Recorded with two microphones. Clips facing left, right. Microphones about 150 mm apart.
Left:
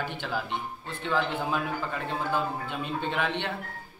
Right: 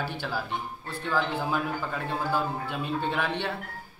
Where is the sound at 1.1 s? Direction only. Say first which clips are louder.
Even; 5° right (ahead or behind).